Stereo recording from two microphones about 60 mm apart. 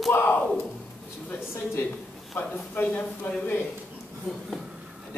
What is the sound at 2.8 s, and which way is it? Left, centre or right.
Speech, left.